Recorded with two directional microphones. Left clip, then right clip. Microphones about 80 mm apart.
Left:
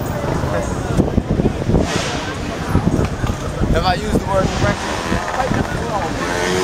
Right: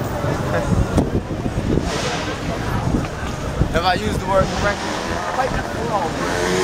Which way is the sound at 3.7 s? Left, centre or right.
Centre.